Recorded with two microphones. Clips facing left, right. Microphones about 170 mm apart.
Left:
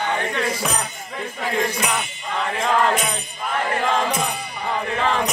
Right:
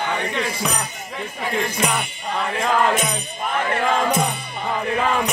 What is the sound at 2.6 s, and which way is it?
Music, 5° right (ahead or behind).